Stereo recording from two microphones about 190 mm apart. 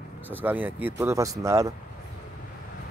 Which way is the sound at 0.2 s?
10° right (ahead or behind).